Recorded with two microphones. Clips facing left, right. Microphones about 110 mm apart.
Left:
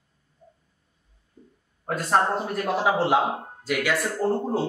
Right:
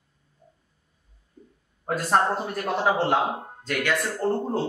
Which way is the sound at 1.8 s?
Centre (ahead or behind).